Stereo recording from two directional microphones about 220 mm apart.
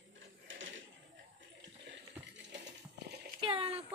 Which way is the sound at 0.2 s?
60° right (ahead or behind).